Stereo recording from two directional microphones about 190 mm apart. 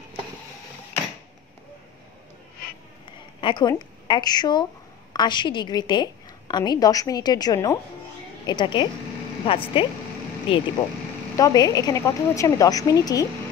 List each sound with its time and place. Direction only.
3.3 s a woman's voice: 25° left (ahead or behind)